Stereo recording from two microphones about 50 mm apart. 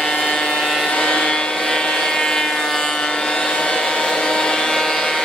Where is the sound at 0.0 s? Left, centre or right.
Centre.